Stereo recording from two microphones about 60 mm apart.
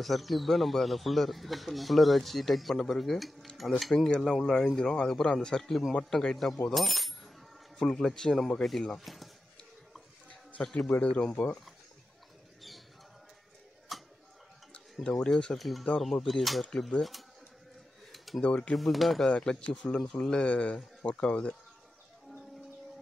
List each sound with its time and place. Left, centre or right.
0.0 s speech: centre
3.9 s speech: centre
7.8 s speech: centre
10.5 s speech: centre
13.9 s tick-tock: centre
15.0 s speech: centre
18.1 s a sound: centre
18.4 s speech: centre
18.8 s speech: centre
19.3 s speech: centre